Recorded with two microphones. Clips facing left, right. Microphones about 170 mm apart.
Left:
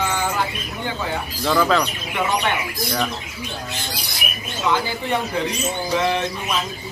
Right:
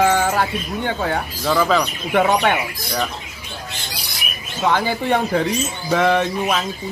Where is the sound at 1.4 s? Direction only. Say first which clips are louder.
Right 1 dB; 5° right (ahead or behind).